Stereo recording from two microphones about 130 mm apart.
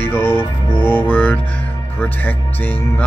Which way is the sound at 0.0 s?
15° left (ahead or behind).